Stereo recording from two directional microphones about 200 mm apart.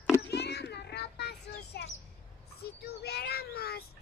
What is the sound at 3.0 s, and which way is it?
Speech, 55° left (ahead or behind).